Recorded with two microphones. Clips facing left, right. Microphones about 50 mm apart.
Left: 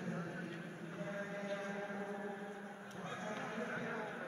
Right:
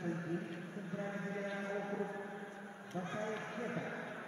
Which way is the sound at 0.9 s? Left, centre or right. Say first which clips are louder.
Right 3 dB; right.